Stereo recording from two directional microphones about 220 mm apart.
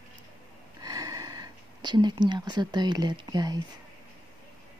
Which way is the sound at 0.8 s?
15° right (ahead or behind).